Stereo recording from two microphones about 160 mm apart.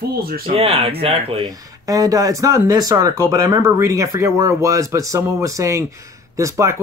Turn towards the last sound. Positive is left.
turn(degrees=-20)  # may be behind; listen again after turning